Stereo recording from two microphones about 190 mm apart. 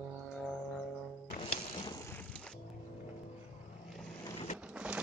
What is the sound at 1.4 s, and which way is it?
Music, 25° left (ahead or behind).